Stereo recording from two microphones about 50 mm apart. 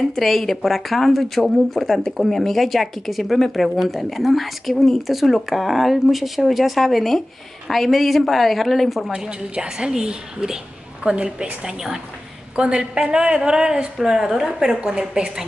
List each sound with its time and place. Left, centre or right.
0.0 s speech: centre
9.1 s a woman's voice: centre